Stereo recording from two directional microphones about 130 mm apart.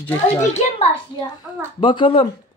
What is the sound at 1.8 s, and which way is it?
Speech, 40° left (ahead or behind).